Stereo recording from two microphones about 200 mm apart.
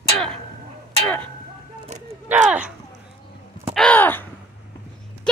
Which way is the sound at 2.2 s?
5° right (ahead or behind).